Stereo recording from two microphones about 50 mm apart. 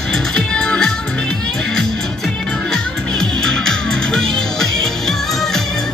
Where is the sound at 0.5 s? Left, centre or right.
Centre.